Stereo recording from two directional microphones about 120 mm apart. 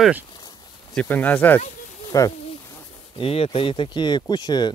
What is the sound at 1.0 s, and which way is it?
Speech, 15° left (ahead or behind).